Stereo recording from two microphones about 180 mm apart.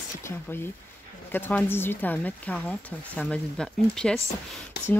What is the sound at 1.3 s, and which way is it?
Speech, 10° left (ahead or behind).